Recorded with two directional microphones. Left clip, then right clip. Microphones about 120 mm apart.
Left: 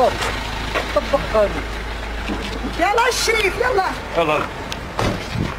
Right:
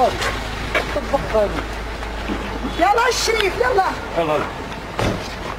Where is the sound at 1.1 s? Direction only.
50° left (ahead or behind).